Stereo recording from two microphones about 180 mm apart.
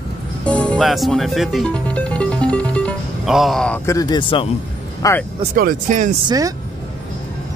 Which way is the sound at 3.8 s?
20° left (ahead or behind).